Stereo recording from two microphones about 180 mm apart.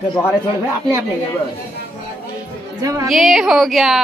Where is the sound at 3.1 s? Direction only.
Centre (ahead or behind).